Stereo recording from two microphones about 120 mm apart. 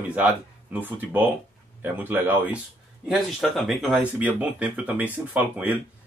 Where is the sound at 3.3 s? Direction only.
Centre (ahead or behind).